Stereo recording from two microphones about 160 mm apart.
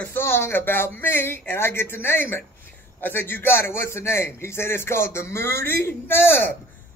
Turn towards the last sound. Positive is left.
turn(degrees=15)  # may be behind; listen again after turning